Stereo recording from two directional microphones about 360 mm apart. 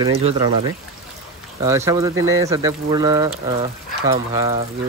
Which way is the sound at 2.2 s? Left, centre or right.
Right.